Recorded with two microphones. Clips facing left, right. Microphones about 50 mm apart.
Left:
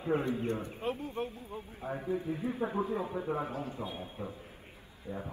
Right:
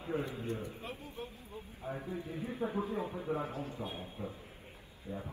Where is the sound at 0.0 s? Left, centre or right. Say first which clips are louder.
Left 6 dB; left.